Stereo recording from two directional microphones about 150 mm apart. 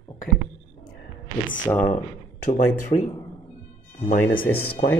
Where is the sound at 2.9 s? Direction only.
50° left (ahead or behind).